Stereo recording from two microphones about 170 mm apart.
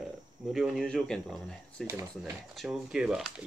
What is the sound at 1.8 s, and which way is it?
Speech, 15° right (ahead or behind).